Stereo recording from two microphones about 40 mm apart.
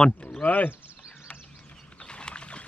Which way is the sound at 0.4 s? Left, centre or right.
Left.